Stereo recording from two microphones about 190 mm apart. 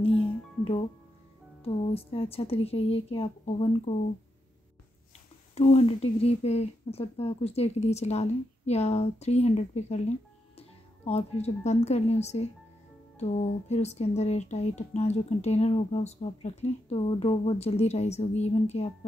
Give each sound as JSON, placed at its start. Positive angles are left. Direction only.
{"t": 1.6, "sound": "speech", "side_deg": 30}
{"t": 5.5, "sound": "speech", "side_deg": 35}
{"t": 11.1, "sound": "speech", "side_deg": 35}